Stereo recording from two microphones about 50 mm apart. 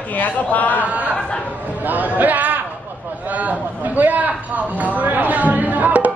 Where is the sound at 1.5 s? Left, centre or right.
Right.